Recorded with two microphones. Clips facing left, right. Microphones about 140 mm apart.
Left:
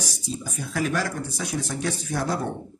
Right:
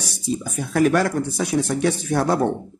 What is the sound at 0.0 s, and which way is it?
Speech, 60° right (ahead or behind).